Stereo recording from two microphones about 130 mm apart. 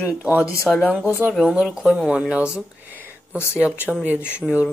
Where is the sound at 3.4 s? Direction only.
20° left (ahead or behind).